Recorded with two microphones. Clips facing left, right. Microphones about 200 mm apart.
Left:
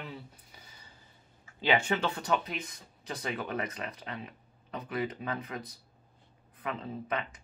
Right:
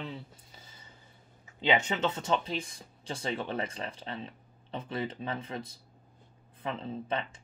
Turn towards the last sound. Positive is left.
turn(degrees=-30)  # may be behind; listen again after turning